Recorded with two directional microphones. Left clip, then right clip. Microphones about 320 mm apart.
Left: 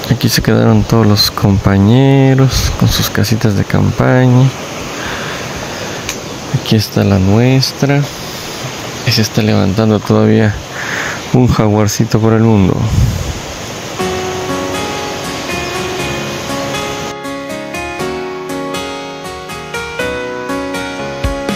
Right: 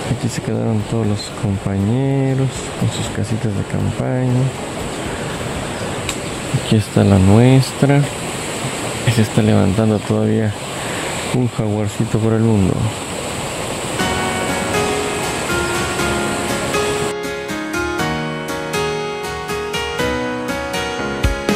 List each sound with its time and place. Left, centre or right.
0.5 s speech: centre
4.0 s speech: centre
6.7 s speech: centre
9.0 s speech: centre
11.6 s speech: centre